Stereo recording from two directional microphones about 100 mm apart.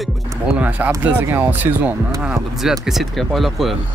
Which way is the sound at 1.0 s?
15° right (ahead or behind).